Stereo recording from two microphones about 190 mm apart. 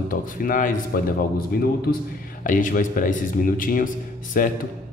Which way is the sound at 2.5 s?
45° left (ahead or behind).